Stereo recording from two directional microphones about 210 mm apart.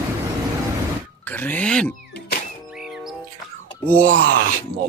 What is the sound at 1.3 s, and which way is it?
Music, 10° left (ahead or behind).